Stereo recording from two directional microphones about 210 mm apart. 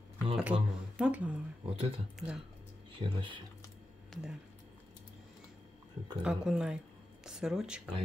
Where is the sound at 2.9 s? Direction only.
25° right (ahead or behind).